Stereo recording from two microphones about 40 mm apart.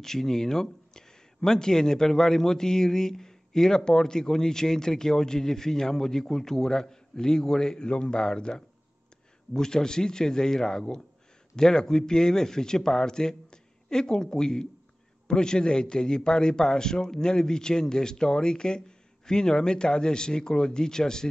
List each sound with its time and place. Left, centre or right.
0.0 s a man's voice: centre